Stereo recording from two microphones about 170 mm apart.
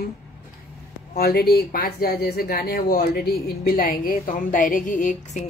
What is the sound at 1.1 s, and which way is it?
Speech, 65° left (ahead or behind).